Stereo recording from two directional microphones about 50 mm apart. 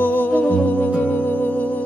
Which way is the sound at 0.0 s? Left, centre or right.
Left.